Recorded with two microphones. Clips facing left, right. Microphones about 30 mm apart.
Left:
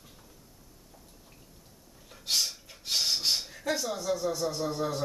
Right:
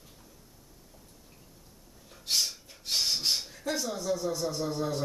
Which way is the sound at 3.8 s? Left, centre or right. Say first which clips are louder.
Left 1 dB; centre.